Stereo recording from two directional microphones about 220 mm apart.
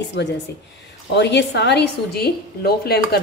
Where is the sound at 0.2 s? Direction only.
55° left (ahead or behind).